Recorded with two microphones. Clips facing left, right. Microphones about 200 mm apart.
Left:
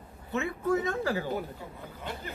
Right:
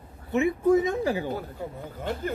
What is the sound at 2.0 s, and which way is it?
Speech, 50° right (ahead or behind).